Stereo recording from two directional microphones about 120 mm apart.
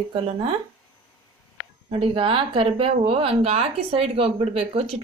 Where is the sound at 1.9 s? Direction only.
45° right (ahead or behind).